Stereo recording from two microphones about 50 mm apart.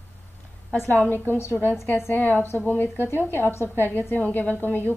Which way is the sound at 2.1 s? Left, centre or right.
Left.